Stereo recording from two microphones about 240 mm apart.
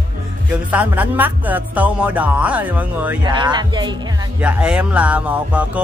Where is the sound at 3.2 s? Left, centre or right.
Centre.